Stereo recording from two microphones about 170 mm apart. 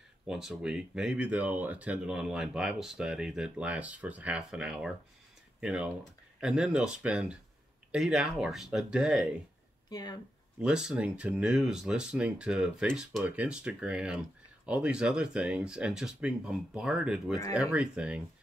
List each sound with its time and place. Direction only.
0.3 s speech: 5° right (ahead or behind)
9.8 s speech: 25° left (ahead or behind)
10.6 s speech: 5° right (ahead or behind)